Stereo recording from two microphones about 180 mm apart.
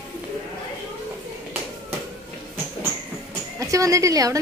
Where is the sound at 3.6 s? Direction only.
20° right (ahead or behind).